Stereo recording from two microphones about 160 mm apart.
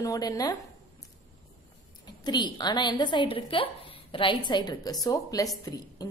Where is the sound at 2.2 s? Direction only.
25° left (ahead or behind).